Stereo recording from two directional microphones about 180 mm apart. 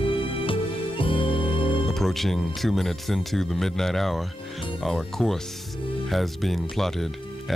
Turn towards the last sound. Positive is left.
turn(degrees=0)  # may be behind; listen again after turning